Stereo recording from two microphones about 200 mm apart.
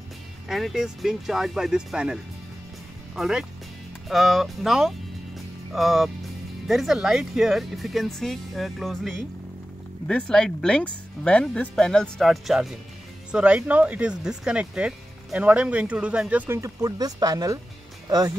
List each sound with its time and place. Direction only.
0.5 s speech: centre (ahead or behind)
3.2 s speech: 5° right (ahead or behind)